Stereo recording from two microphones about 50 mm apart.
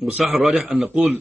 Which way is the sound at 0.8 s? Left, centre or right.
Right.